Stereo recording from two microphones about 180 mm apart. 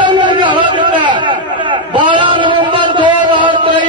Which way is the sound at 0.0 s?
25° right (ahead or behind).